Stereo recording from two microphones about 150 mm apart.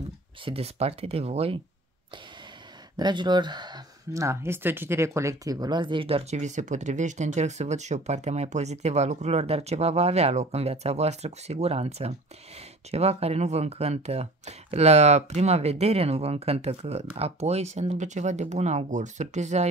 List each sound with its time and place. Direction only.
0.5 s speech: 45° right (ahead or behind)
3.0 s speech: 30° right (ahead or behind); by 19.7 s 50° right (ahead or behind)